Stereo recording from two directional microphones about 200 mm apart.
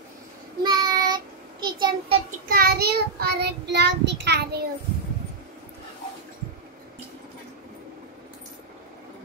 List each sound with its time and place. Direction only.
0.7 s child singing: 20° right (ahead or behind)
2.4 s child singing: 50° right (ahead or behind)